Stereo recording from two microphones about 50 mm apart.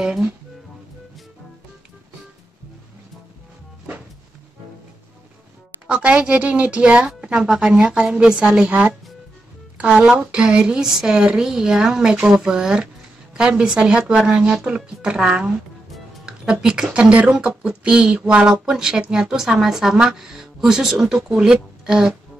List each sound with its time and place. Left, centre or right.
0.0 s speech: centre
5.9 s a woman's voice: right
16.6 s speech: centre